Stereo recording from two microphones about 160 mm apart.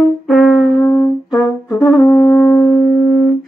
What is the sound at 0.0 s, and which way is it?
Brass instrument, 5° left (ahead or behind).